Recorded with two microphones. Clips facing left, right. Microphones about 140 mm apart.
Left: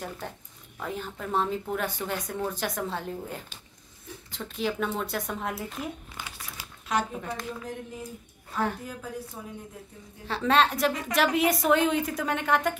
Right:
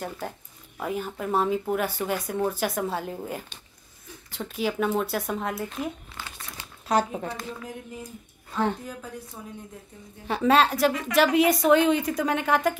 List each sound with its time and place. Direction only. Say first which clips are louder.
0.7 s a woman's voice: right 5 dB; 10° right (ahead or behind)
6.1 s crumpling: right 1 dB; 10° left (ahead or behind)
6.9 s speech: right 4 dB; 35° right (ahead or behind)
10.2 s a woman's voice: right 3 dB; 10° right (ahead or behind)